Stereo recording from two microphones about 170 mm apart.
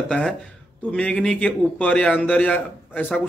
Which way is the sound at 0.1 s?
5° left (ahead or behind).